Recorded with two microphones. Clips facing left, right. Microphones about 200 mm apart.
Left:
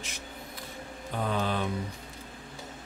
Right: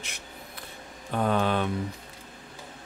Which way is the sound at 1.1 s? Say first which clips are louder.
Right 5 dB; 60° right (ahead or behind).